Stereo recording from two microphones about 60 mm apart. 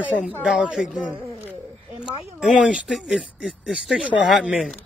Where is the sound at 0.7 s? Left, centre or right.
Centre.